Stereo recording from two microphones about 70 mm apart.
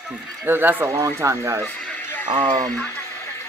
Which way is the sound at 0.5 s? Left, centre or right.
Right.